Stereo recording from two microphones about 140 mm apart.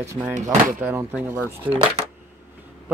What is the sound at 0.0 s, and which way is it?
Speech, 20° right (ahead or behind).